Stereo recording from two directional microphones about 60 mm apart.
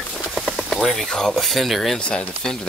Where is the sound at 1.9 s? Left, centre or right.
Centre.